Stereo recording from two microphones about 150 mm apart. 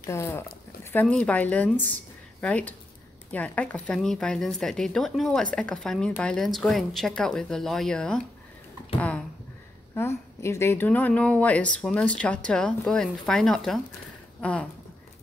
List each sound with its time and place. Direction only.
0.0 s speech: 20° left (ahead or behind)
9.9 s speech: 20° left (ahead or behind)